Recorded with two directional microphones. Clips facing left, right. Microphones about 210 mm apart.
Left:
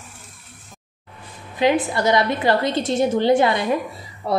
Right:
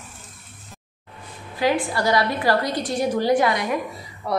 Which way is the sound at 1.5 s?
20° left (ahead or behind).